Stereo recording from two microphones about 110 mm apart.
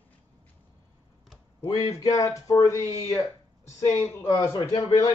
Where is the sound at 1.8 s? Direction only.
35° left (ahead or behind).